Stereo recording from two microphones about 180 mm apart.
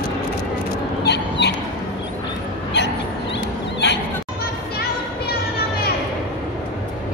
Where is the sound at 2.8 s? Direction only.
75° left (ahead or behind).